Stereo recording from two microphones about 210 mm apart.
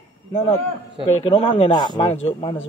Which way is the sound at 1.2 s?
25° left (ahead or behind).